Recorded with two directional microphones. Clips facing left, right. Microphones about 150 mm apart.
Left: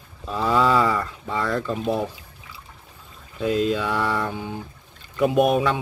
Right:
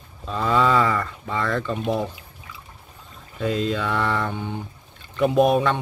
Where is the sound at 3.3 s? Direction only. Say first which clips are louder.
Left 2 dB; 5° left (ahead or behind).